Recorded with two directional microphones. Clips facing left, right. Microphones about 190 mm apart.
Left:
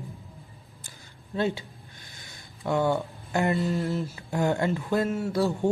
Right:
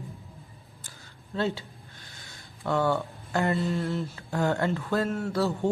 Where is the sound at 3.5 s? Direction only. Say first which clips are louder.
Left 1 dB; centre (ahead or behind).